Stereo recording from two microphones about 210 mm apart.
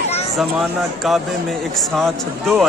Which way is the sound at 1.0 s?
Centre (ahead or behind).